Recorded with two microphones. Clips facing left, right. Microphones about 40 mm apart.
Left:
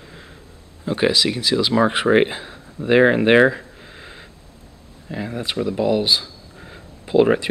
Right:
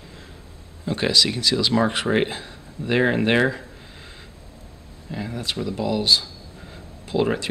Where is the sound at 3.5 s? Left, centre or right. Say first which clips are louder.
Left 2 dB; centre.